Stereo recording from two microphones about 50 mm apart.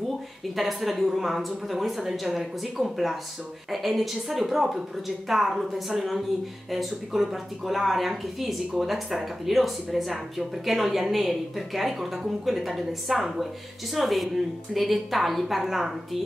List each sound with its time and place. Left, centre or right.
0.6 s speech: centre